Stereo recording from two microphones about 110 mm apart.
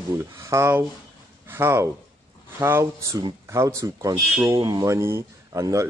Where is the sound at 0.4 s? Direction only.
25° right (ahead or behind).